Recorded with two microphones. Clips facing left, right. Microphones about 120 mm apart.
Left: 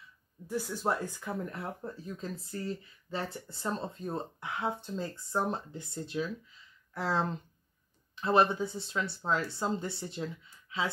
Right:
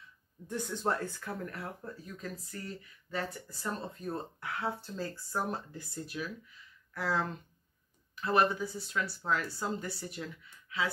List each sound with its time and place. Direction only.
0.5 s speech: 5° left (ahead or behind); by 10.9 s 25° left (ahead or behind)